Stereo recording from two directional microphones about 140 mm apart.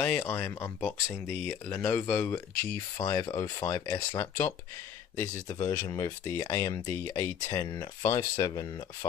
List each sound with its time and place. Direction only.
0.0 s speech: 15° left (ahead or behind)